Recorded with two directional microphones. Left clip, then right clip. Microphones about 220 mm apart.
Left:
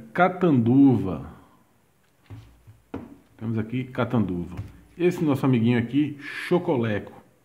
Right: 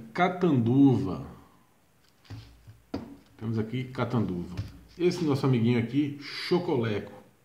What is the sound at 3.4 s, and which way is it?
A man's voice, 30° left (ahead or behind).